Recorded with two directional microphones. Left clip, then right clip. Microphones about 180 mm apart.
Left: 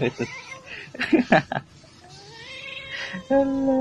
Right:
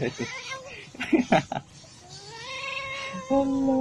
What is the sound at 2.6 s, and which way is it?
Cat, 15° right (ahead or behind).